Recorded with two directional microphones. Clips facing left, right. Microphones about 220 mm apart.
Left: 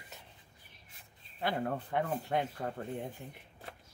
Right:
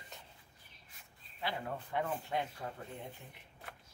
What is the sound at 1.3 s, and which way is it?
Speech, 50° left (ahead or behind).